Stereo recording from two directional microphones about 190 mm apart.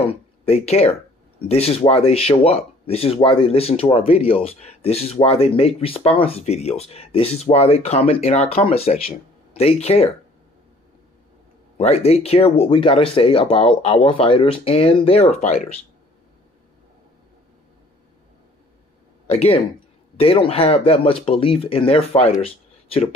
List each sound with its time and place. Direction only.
0.1 s speech: 35° left (ahead or behind)
11.8 s speech: 35° left (ahead or behind)
19.3 s speech: 35° left (ahead or behind)